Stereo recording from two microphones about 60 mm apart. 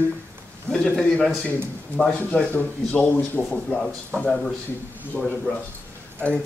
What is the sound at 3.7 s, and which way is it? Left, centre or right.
Speech, centre.